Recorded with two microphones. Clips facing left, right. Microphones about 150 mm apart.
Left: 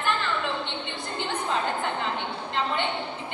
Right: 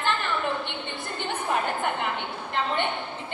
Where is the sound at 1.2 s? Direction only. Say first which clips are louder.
Right 1 dB; 15° right (ahead or behind).